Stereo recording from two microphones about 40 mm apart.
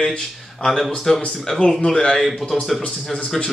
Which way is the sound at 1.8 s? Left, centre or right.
Left.